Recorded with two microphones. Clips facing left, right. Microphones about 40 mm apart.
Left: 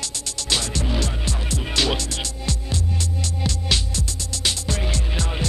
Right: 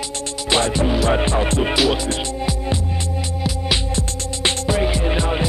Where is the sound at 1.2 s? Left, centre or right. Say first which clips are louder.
Right 10 dB; right.